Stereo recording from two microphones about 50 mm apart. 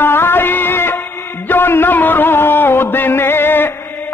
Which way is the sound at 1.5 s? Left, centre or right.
Left.